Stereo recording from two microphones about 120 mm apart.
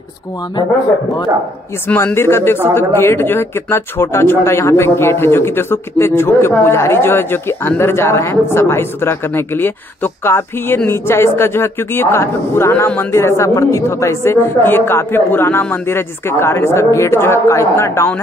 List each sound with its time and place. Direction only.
2.1 s speech: 20° left (ahead or behind)